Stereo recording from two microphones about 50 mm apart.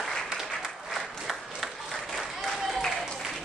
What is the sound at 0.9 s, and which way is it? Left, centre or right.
Applause, centre.